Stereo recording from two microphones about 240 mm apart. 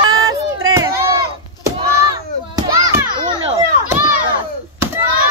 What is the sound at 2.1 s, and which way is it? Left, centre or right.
Children playing, centre.